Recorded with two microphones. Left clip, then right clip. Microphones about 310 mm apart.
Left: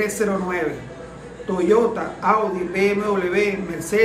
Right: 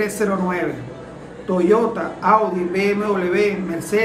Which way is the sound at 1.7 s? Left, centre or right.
Centre.